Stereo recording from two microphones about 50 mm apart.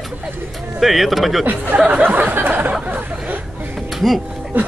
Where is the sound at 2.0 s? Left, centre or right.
Right.